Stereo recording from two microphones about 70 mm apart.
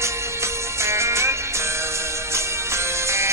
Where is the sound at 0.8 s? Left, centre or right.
Right.